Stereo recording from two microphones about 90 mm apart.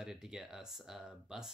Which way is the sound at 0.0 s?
5° right (ahead or behind).